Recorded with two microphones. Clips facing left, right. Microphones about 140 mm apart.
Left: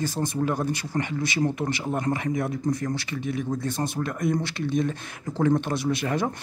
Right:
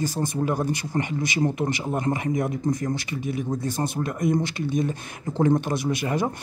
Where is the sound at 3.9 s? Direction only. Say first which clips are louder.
Right 4 dB; 15° right (ahead or behind).